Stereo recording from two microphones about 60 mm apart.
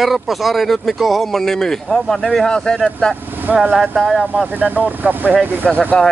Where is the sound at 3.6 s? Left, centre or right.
Centre.